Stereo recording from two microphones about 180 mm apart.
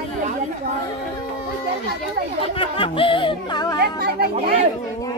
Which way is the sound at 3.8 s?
60° right (ahead or behind).